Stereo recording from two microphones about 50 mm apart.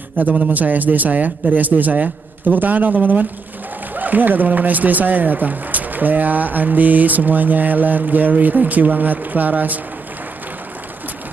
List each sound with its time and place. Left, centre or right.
0.2 s speech: right